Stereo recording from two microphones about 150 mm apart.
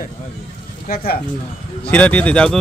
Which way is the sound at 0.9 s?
85° left.